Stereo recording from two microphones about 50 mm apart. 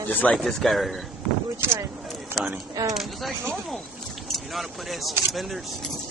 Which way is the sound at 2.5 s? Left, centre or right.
Centre.